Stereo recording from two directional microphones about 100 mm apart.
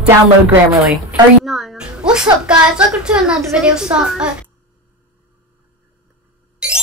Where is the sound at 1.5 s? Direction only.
Centre (ahead or behind).